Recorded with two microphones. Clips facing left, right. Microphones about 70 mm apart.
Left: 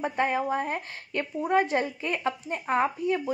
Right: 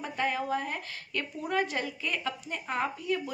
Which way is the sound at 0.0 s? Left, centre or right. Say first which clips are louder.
Left 5 dB; left.